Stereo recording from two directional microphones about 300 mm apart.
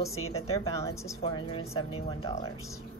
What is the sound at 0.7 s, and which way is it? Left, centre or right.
A woman's voice, centre.